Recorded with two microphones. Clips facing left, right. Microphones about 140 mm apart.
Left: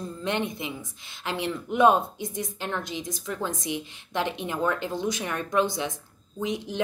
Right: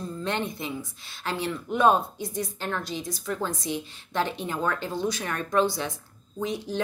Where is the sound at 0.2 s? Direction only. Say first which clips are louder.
Left 2 dB; 15° left (ahead or behind).